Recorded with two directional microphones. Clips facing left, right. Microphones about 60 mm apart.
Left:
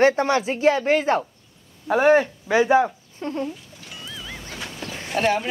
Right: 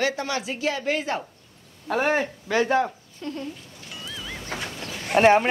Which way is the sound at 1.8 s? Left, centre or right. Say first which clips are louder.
Left 6 dB; centre.